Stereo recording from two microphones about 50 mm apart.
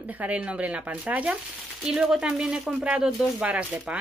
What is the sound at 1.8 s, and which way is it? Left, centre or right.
Speech, centre.